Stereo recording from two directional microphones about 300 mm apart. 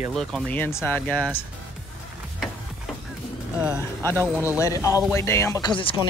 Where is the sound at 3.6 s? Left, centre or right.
Centre.